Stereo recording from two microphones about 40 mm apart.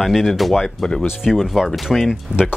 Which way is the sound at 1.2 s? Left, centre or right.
Centre.